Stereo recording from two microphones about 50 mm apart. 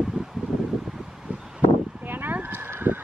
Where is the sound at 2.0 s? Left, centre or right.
Right.